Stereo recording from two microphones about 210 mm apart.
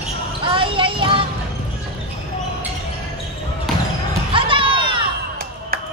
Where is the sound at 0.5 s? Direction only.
25° right (ahead or behind).